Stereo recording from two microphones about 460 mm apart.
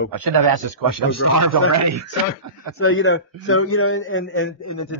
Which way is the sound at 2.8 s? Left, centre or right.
Left.